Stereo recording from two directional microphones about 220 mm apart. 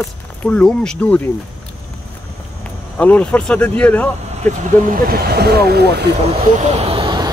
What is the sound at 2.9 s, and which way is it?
Speech, 5° left (ahead or behind).